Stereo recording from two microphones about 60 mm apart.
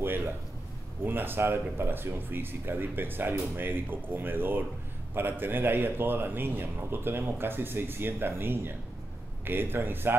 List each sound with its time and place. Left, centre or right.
1.0 s a man's voice: right